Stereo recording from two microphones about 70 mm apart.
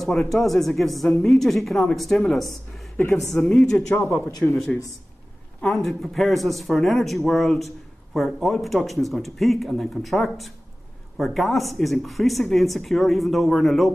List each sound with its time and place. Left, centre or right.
0.0 s a woman's voice: centre
5.7 s speech: centre